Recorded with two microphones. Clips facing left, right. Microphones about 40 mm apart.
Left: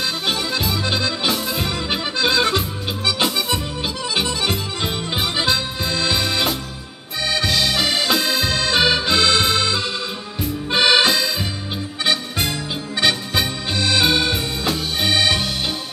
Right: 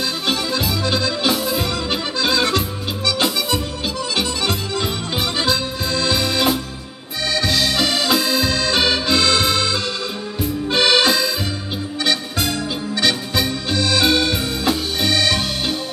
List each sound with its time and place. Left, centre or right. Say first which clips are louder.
0.3 s accordion: right 2 dB; centre
0.8 s accordion: right 3 dB; centre
1.2 s accordion: right 2 dB; centre
3.1 s music: right 1 dB; centre
4.1 s accordion: left 1 dB; centre
7.4 s music: right 1 dB; centre
8.5 s accordion: even; centre
12.0 s music: even; centre